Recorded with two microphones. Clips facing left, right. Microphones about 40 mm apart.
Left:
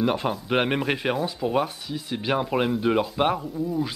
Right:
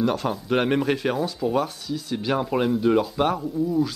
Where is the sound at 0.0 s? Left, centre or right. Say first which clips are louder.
Even; left.